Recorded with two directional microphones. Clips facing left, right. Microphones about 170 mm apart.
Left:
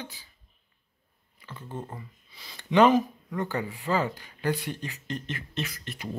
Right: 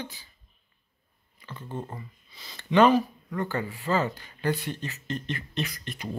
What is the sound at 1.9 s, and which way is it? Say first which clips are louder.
Speech: right 1 dB; 10° left (ahead or behind).